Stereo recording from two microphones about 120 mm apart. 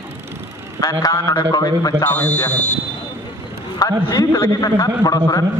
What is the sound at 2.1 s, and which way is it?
Speech, 10° left (ahead or behind).